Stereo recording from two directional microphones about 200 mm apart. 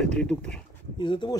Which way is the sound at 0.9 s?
25° left (ahead or behind).